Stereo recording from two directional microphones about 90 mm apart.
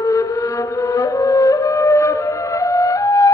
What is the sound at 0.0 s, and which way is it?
Music, 40° left (ahead or behind).